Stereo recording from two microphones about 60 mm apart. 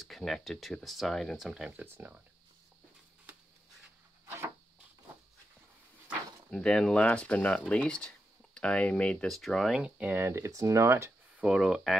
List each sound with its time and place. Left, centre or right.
0.0 s speech: centre
1.4 s speech: centre
1.7 s speech: right
6.5 s speech: centre
7.1 s speech: left
9.3 s speech: centre
9.8 s speech: centre
10.1 s speech: right
11.4 s speech: centre